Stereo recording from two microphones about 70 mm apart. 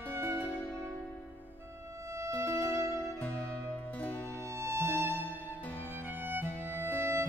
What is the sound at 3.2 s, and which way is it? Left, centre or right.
Music, left.